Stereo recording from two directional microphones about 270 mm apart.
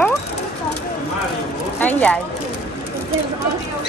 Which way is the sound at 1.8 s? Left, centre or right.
Centre.